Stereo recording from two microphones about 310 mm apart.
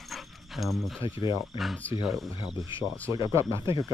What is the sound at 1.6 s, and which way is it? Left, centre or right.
Speech, centre.